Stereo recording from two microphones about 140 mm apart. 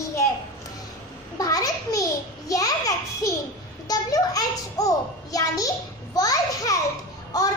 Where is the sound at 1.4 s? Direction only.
25° left (ahead or behind).